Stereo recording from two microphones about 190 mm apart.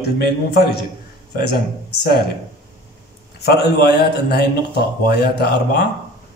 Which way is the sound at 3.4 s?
60° left (ahead or behind).